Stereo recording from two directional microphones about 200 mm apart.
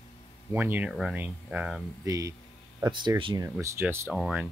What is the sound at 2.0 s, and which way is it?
Speech, 15° right (ahead or behind).